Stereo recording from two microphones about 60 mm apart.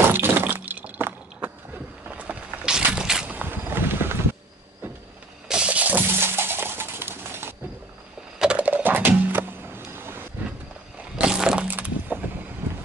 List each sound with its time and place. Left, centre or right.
0.1 s breaking: right
2.0 s vehicle: right
2.6 s a sound: centre
3.3 s a sound: right
5.5 s music: centre
6.1 s pigeon: right
8.4 s patter: centre
8.6 s music: right
11.1 s a sound: centre
11.6 s breaking: right
12.6 s vehicle: right